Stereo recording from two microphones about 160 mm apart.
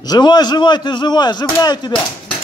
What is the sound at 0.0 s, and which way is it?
A man's voice, 25° left (ahead or behind).